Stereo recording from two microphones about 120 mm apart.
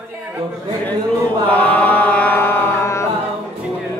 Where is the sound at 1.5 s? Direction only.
15° left (ahead or behind).